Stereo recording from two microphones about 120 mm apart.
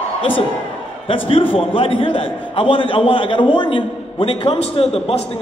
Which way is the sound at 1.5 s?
50° left (ahead or behind).